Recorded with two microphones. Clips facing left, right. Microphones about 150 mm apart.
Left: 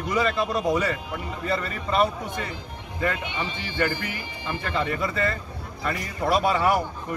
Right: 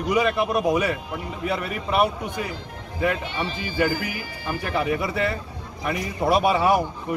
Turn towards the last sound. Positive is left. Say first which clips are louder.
# right 2 dB
turn(degrees=-20)  # may be behind; listen again after turning